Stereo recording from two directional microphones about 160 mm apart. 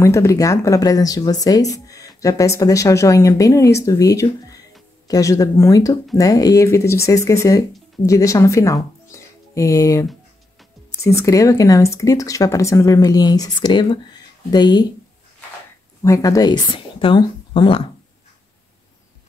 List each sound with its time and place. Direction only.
0.0 s speech: 20° left (ahead or behind)
16.0 s speech: 20° left (ahead or behind)